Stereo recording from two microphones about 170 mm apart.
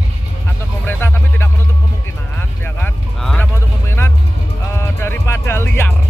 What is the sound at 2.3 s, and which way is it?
Vehicle, 10° left (ahead or behind).